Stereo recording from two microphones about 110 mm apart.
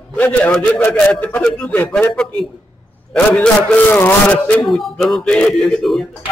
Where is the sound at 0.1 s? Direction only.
15° left (ahead or behind).